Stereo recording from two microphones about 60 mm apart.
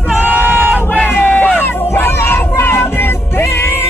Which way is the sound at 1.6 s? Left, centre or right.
Left.